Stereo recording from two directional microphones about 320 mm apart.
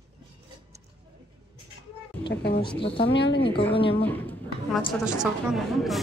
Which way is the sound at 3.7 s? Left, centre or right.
Centre.